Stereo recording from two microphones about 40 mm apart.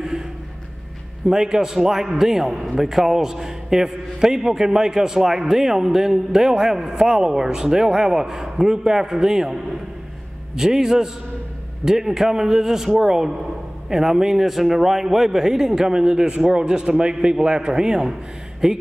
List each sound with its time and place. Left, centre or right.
1.2 s a man's voice: centre
15.7 s a man's voice: centre